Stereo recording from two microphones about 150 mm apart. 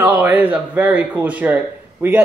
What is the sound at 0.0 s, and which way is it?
A woman's voice, 10° right (ahead or behind).